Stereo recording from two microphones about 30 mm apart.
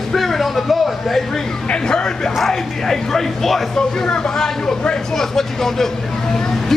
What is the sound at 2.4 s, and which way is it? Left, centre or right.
A man's voice, centre.